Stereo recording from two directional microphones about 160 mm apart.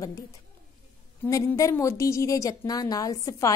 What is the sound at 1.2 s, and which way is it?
A woman's voice, 20° left (ahead or behind).